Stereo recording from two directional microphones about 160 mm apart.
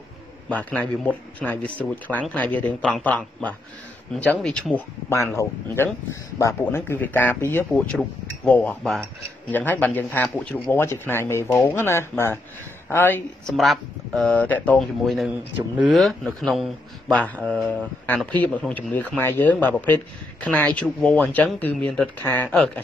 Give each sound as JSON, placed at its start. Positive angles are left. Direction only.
{"t": 0.5, "sound": "speech", "side_deg": 10}
{"t": 5.1, "sound": "speech", "side_deg": 20}
{"t": 13.5, "sound": "speech", "side_deg": 0}